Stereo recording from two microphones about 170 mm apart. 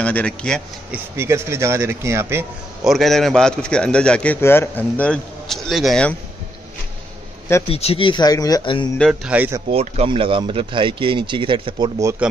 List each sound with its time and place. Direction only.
0.0 s speech: 5° left (ahead or behind)
0.9 s speech: 15° right (ahead or behind)
2.8 s a man's voice: centre (ahead or behind)
7.6 s speech: 35° left (ahead or behind)
8.9 s a man's voice: 5° left (ahead or behind)
9.3 s speech: 10° right (ahead or behind)
9.7 s speech: 35° right (ahead or behind)